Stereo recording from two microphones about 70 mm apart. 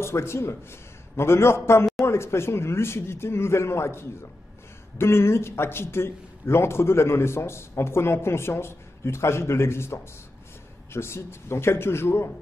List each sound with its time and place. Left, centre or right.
0.0 s a man's voice: left